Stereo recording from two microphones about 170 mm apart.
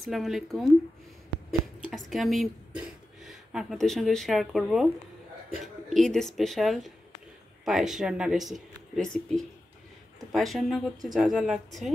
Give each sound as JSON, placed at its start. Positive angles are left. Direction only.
{"t": 0.0, "sound": "speech", "side_deg": 0}
{"t": 1.9, "sound": "speech", "side_deg": 0}